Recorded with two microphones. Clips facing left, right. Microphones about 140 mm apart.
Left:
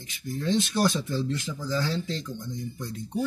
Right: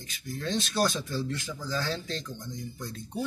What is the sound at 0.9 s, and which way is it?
Speech, 20° left (ahead or behind).